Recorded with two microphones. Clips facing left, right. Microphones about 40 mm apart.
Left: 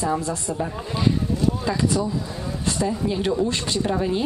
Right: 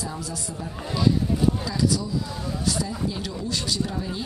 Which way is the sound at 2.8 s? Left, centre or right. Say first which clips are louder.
Left 6 dB; left.